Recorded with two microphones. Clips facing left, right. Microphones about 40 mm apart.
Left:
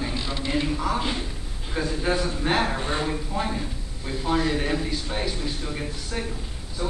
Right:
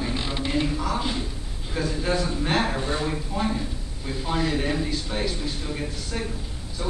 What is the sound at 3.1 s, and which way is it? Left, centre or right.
A man's voice, centre.